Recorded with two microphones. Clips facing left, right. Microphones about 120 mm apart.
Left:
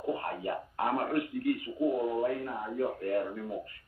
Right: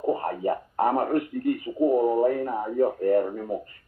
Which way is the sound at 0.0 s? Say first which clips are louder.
Right 8 dB; 35° right (ahead or behind).